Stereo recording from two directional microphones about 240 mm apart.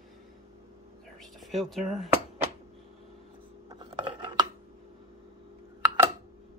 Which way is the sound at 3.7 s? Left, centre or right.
Centre.